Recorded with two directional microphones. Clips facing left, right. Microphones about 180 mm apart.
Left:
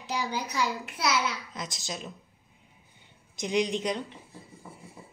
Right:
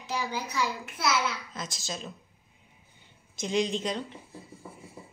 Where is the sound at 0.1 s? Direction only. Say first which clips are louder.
Left 1 dB; 15° left (ahead or behind).